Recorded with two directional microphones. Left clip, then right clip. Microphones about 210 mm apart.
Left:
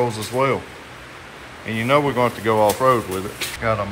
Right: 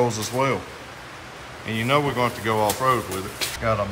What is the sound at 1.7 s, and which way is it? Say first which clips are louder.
Speech: left 4 dB; 10° right (ahead or behind).